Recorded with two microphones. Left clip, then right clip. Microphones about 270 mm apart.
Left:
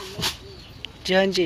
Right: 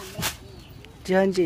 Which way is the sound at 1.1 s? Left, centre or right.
Centre.